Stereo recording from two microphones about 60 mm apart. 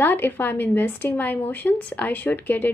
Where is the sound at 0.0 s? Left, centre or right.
Left.